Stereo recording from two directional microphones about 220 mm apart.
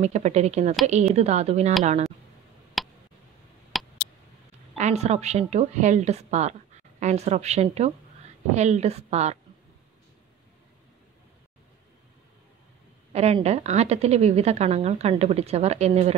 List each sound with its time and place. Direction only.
0.0 s a woman's voice: 30° right (ahead or behind)
2.8 s tick: centre (ahead or behind)
3.7 s a sound: centre (ahead or behind)
4.7 s a woman's voice: 30° right (ahead or behind)
13.1 s a woman's voice: 30° right (ahead or behind)